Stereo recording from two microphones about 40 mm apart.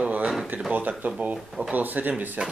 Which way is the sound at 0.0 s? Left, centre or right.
Right.